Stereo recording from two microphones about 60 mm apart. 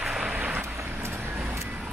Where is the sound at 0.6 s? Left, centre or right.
Right.